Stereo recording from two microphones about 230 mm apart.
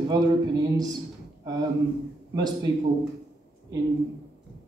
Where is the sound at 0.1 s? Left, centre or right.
Centre.